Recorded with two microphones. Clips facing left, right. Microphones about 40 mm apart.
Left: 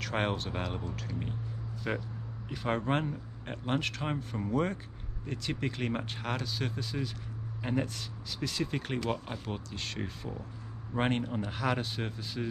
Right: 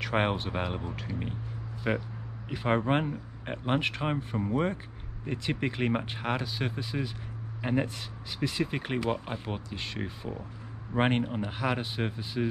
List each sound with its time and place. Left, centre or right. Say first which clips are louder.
0.0 s speech: right 4 dB; centre